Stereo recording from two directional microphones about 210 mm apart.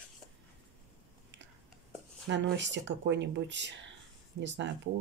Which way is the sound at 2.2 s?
60° right (ahead or behind).